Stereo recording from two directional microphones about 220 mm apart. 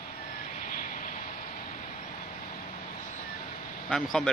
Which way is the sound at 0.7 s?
40° left (ahead or behind).